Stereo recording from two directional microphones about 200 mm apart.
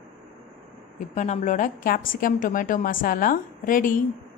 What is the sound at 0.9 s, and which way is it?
A woman's voice, 35° left (ahead or behind).